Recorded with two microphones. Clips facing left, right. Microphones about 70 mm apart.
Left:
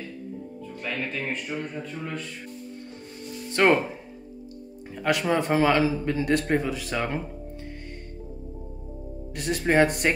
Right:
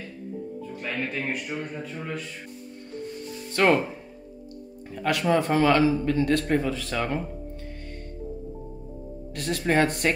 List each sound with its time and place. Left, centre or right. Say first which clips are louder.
0.7 s a man's voice: even; centre
3.6 s speech: left 1 dB; left
5.0 s a man's voice: right 1 dB; centre
9.3 s a man's voice: left 1 dB; centre